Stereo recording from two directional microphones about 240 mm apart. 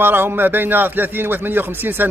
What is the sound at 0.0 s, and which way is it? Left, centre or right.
A man's voice, centre.